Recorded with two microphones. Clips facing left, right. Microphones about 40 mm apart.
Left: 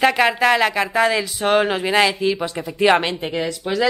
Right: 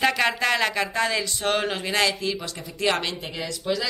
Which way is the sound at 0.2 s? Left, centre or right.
Centre.